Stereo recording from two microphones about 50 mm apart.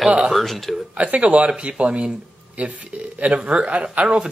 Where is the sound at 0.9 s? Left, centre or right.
Right.